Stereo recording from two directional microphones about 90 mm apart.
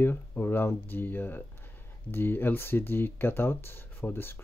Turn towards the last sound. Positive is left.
turn(degrees=25)  # may be behind; listen again after turning